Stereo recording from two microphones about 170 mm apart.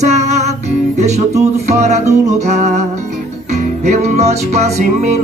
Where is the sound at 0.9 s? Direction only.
40° right (ahead or behind).